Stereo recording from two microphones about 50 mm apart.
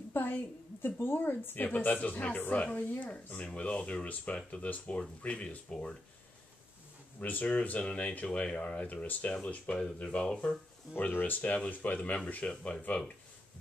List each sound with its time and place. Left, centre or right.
0.1 s a sound: left
1.0 s speech: left
7.2 s speech: left; by 10.6 s centre
11.0 s speech: left